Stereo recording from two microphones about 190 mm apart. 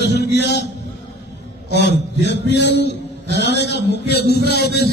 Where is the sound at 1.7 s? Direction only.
65° left (ahead or behind).